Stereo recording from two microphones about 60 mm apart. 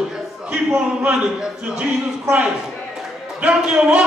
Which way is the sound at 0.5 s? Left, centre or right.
Centre.